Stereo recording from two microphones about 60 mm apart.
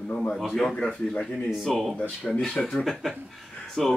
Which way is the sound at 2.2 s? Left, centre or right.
Centre.